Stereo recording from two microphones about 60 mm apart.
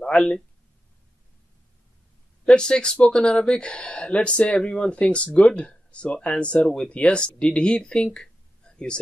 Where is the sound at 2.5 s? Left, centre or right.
Centre.